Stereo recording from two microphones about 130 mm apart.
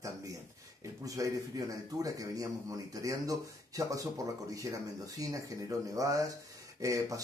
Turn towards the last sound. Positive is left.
turn(degrees=-25)  # may be behind; listen again after turning